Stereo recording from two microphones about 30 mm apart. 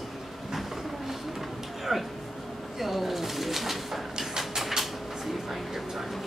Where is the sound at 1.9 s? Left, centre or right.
Centre.